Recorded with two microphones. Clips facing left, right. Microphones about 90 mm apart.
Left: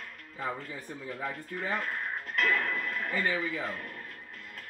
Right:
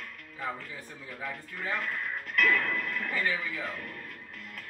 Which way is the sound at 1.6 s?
35° left (ahead or behind).